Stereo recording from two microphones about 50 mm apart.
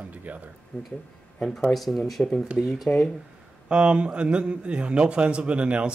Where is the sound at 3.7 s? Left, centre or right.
Right.